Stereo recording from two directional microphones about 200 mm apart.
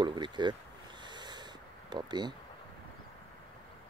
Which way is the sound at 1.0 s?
20° right (ahead or behind).